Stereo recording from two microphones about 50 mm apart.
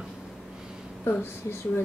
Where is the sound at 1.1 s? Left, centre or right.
Left.